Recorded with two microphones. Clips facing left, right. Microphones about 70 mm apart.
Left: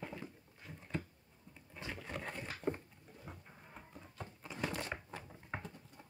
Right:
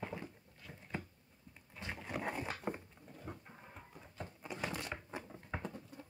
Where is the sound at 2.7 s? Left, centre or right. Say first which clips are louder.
Right 1 dB; centre.